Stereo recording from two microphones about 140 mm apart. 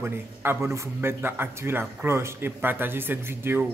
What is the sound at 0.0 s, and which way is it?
A man's voice, 15° right (ahead or behind).